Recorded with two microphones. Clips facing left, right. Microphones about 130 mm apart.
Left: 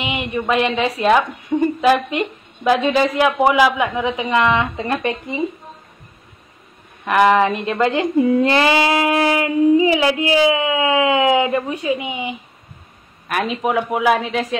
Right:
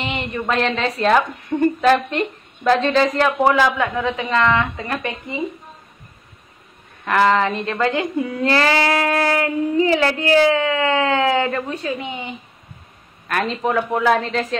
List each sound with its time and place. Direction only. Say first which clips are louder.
0.0 s a woman's voice: left 2 dB; 5° left (ahead or behind)
7.1 s a woman's voice: left 2 dB; 15° left (ahead or behind)